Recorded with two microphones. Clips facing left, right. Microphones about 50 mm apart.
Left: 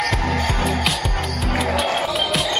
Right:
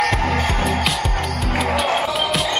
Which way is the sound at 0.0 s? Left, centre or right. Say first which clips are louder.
Right 3 dB; right.